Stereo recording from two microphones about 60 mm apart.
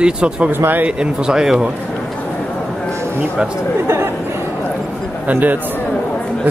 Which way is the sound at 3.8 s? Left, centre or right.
Right.